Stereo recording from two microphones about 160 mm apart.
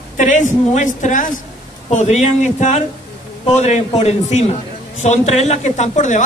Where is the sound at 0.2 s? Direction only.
50° left (ahead or behind).